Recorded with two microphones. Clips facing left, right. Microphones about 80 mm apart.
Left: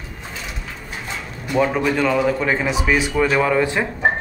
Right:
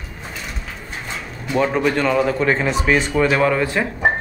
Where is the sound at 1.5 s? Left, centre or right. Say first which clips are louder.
Even; centre.